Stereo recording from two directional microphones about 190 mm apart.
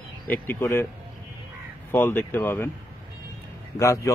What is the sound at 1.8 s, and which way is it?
Speech, 10° left (ahead or behind).